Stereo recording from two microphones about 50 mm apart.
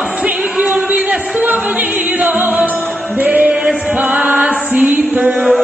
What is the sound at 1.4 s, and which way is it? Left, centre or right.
Music, right.